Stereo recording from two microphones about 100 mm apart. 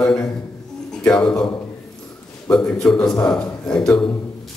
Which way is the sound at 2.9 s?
5° left (ahead or behind).